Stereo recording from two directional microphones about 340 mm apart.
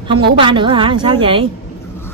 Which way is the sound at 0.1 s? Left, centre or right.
Centre.